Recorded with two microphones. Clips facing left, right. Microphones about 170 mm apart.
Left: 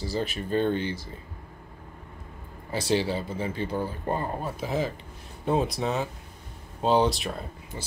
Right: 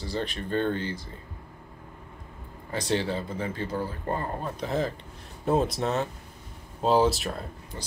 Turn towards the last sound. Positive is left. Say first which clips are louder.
# even
turn(degrees=0)  # may be behind; listen again after turning